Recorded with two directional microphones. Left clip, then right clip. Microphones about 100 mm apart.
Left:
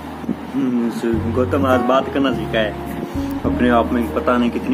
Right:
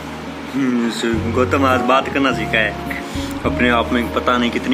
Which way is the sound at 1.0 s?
5° left (ahead or behind).